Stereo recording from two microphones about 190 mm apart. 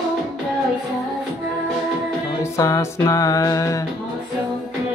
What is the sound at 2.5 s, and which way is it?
Music, 15° left (ahead or behind).